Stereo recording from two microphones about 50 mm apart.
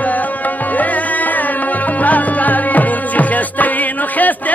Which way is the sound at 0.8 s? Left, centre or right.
Left.